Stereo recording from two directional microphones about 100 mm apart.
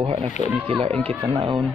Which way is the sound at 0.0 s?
65° right (ahead or behind).